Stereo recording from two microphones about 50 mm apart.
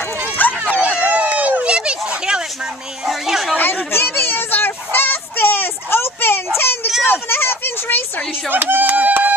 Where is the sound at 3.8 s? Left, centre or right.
Left.